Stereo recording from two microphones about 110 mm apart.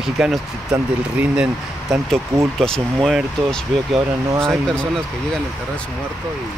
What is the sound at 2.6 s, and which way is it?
Speech, 5° left (ahead or behind).